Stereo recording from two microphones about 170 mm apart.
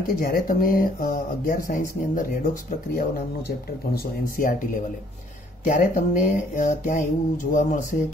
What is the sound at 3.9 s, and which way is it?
Speech, 55° left (ahead or behind).